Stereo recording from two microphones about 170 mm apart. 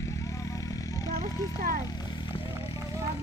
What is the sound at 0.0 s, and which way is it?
Vehicle, 20° left (ahead or behind).